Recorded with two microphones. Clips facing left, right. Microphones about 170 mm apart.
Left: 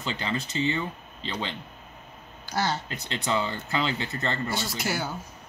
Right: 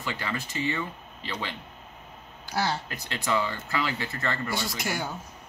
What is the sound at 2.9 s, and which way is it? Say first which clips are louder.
Speech: even; 25° left (ahead or behind).